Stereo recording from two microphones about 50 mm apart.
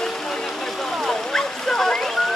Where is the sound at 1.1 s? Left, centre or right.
Centre.